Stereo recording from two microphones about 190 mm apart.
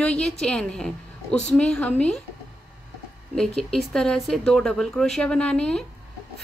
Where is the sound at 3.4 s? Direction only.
Centre (ahead or behind).